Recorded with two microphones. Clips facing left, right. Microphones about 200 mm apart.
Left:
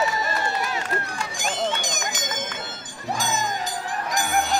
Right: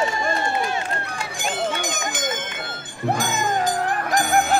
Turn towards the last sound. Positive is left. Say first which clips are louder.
# right 4 dB
turn(degrees=-50)  # may be behind; listen again after turning